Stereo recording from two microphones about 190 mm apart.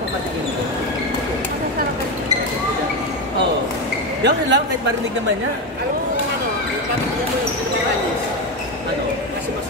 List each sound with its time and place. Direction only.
4.2 s speech: 65° right (ahead or behind)